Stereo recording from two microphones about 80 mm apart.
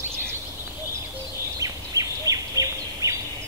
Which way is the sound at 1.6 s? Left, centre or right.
Right.